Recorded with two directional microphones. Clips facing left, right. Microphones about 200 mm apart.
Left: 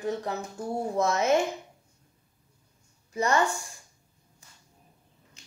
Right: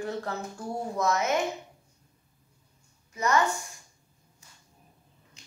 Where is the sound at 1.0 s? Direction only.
30° left (ahead or behind).